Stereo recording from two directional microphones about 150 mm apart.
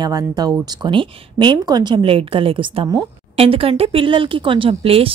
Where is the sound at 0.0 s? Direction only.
25° right (ahead or behind).